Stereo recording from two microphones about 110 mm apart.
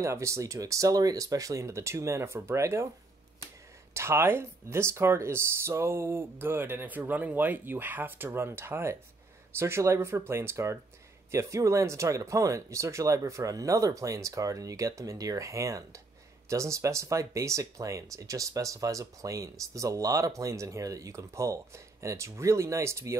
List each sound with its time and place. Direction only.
0.0 s speech: 25° right (ahead or behind)
3.9 s speech: 25° right (ahead or behind)